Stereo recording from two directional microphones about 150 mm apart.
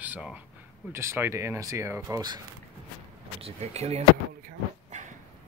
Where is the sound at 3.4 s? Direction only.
45° right (ahead or behind).